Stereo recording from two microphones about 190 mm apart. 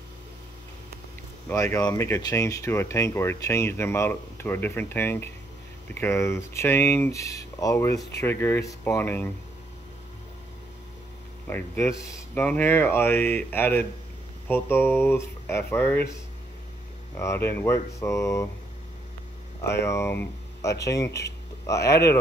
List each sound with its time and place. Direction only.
1.5 s speech: 15° left (ahead or behind)
11.4 s speech: 10° left (ahead or behind)
17.5 s speech: 10° left (ahead or behind)
19.8 s speech: 15° left (ahead or behind)